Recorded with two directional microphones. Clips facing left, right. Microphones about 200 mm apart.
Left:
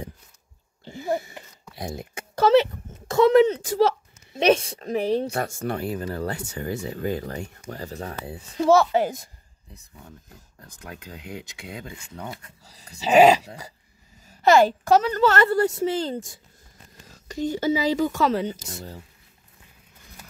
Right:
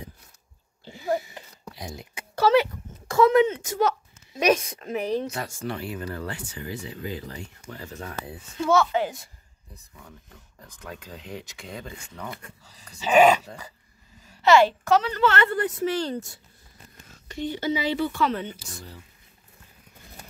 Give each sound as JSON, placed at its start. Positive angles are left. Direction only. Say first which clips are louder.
{"t": 1.8, "sound": "speech", "louder": "left 6 dB", "side_deg": 55}
{"t": 2.6, "sound": "speech", "louder": "left 2 dB", "side_deg": 25}
{"t": 5.3, "sound": "speech", "louder": "left 5 dB", "side_deg": 45}
{"t": 7.6, "sound": "speech", "louder": "left 4 dB", "side_deg": 40}
{"t": 10.0, "sound": "speech", "louder": "left 2 dB", "side_deg": 30}
{"t": 10.9, "sound": "speech", "louder": "even", "side_deg": 15}
{"t": 12.2, "sound": "speech", "louder": "left 2 dB", "side_deg": 35}
{"t": 17.3, "sound": "speech", "louder": "left 4 dB", "side_deg": 45}